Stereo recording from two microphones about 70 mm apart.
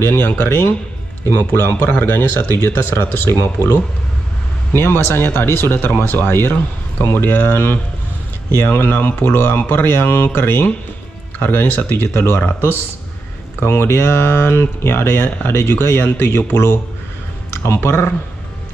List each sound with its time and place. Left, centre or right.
0.0 s speech: left
13.6 s speech: left